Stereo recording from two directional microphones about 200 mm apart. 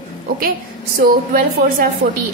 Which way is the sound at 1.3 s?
45° right (ahead or behind).